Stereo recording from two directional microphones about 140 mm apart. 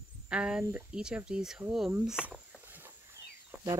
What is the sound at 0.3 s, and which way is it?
Speech, 5° right (ahead or behind).